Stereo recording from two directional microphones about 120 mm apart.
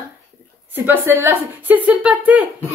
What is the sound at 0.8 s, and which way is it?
Speech, 20° right (ahead or behind).